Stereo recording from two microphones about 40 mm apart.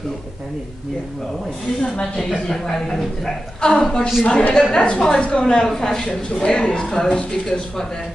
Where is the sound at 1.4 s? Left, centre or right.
Left.